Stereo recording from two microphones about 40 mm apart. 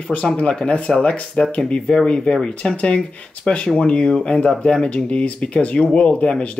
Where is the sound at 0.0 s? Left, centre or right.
Left.